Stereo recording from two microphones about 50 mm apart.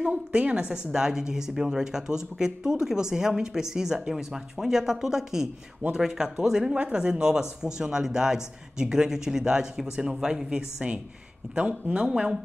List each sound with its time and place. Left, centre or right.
0.1 s a woman's voice: right